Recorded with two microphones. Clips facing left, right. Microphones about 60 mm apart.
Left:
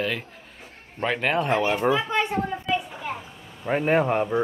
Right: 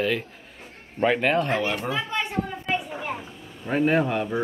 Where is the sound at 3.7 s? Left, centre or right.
Left.